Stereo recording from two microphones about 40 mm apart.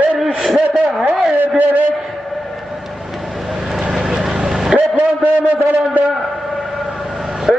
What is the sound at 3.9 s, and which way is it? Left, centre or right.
Vehicle, centre.